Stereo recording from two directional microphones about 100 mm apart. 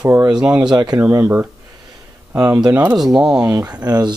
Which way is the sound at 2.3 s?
35° right (ahead or behind).